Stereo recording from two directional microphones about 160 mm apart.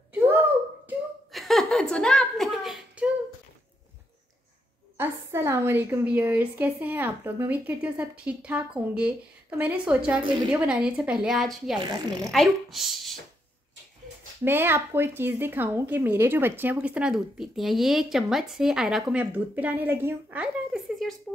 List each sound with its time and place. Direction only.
1.3 s a sound: centre (ahead or behind)
4.9 s a woman's voice: 15° right (ahead or behind)
11.8 s speech: 25° right (ahead or behind)
12.3 s a woman's voice: centre (ahead or behind)
14.4 s a woman's voice: 15° right (ahead or behind)